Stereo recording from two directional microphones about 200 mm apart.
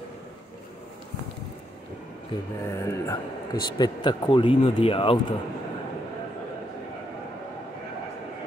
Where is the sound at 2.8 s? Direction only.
20° left (ahead or behind).